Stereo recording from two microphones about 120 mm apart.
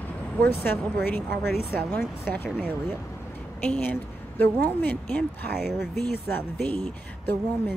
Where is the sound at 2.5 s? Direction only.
10° right (ahead or behind).